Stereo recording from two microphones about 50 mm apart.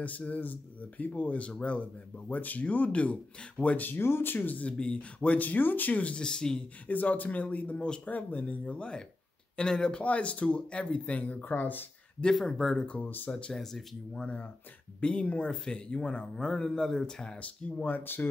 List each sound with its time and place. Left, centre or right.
0.0 s a man's voice: left
3.8 s speech: left
4.6 s speech: left
5.3 s a man's voice: left
6.1 s speech: centre
6.9 s a man's voice: left; by 8.1 s centre
8.1 s speech: left; by 10.0 s centre
10.0 s speech: left
12.4 s speech: centre
12.8 s speech: left
13.3 s speech: centre
14.2 s speech: left
17.8 s a man's voice: left